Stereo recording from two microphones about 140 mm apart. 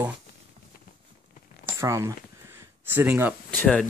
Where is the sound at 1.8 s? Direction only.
20° right (ahead or behind).